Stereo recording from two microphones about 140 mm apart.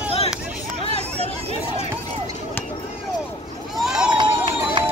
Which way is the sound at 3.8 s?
5° right (ahead or behind).